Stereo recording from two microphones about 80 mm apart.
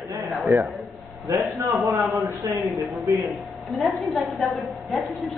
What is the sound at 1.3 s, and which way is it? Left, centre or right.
Speech, right.